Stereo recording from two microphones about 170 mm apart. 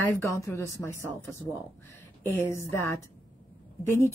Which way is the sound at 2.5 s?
15° left (ahead or behind).